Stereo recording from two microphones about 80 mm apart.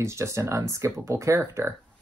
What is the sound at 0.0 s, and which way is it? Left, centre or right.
Speech, right.